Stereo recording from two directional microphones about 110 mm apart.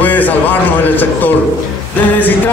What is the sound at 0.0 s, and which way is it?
A man's voice, 15° left (ahead or behind).